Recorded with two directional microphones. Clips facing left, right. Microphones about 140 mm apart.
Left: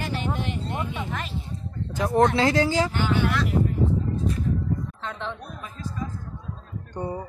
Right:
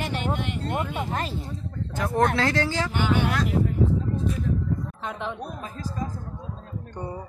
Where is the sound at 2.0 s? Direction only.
25° left (ahead or behind).